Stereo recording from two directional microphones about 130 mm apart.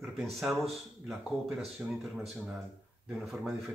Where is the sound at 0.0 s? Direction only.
Centre (ahead or behind).